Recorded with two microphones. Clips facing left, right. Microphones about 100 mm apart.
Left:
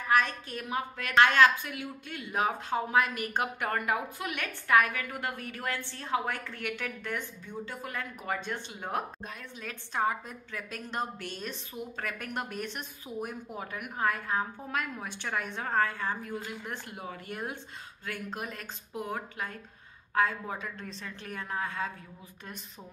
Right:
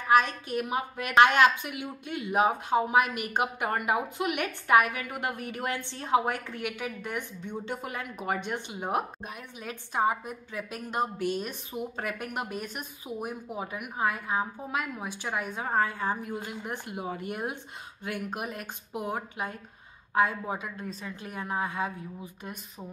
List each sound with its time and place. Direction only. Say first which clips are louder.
0.1 s a woman's voice: right 4 dB; 15° right (ahead or behind)